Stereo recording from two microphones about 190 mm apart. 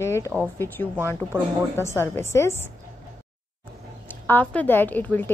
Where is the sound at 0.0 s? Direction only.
15° left (ahead or behind).